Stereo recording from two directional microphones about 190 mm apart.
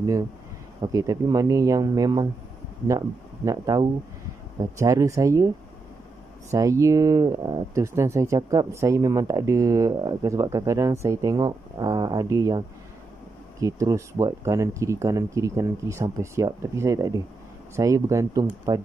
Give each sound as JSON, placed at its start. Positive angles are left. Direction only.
{"t": 0.9, "sound": "speech", "side_deg": -20}
{"t": 6.5, "sound": "speech", "side_deg": -15}